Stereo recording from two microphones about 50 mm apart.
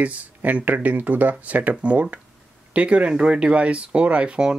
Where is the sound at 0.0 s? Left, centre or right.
Right.